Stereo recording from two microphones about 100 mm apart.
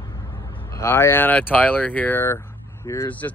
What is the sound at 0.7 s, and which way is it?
Speech, 25° left (ahead or behind).